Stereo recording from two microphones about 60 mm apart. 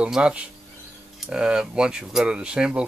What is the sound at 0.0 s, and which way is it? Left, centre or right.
Speech, centre.